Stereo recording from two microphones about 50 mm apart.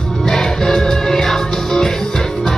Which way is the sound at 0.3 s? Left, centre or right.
Centre.